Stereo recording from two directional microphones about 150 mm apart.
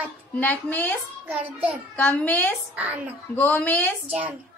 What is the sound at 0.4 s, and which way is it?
Speech, 10° left (ahead or behind).